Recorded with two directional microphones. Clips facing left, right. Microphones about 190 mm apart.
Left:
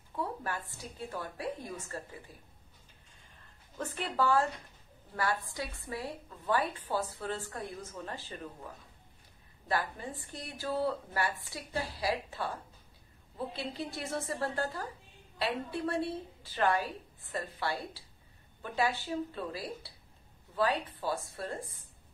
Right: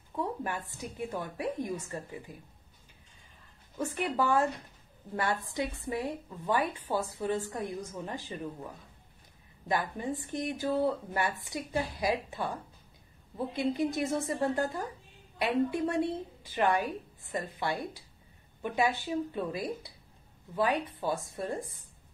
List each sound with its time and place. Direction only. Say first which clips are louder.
0.1 s a woman's voice: right 3 dB; 20° right (ahead or behind)
3.7 s a woman's voice: right 4 dB; 10° right (ahead or behind)
9.7 s a woman's voice: right 3 dB; 20° right (ahead or behind)